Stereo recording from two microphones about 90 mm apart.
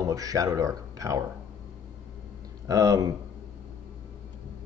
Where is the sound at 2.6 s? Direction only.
40° right (ahead or behind).